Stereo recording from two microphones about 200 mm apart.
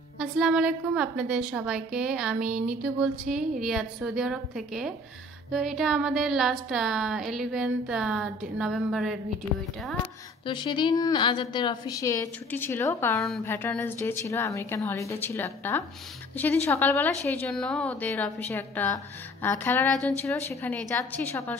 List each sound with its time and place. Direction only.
0.2 s a woman's voice: 5° right (ahead or behind)
10.4 s a woman's voice: 25° left (ahead or behind)